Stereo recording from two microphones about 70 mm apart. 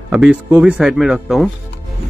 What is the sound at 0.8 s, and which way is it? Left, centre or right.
Speech, centre.